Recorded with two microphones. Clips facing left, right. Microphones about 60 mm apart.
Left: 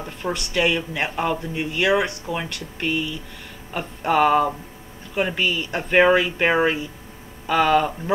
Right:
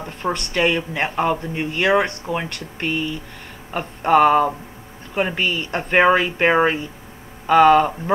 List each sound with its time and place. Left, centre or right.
0.0 s speech: right